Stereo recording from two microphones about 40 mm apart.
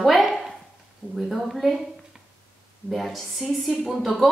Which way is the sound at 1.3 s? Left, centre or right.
Centre.